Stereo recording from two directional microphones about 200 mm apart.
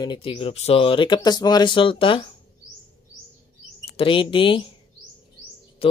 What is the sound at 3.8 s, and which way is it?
Speech, 25° left (ahead or behind).